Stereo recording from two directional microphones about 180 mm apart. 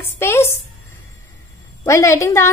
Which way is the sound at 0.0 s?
15° left (ahead or behind).